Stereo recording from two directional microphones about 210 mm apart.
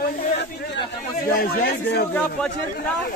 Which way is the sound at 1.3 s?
45° left (ahead or behind).